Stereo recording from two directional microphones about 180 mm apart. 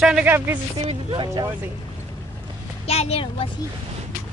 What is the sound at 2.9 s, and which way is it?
Speech, 35° left (ahead or behind).